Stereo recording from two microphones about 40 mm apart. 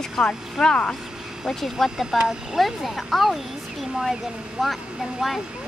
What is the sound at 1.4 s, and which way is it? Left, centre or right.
Speech, centre.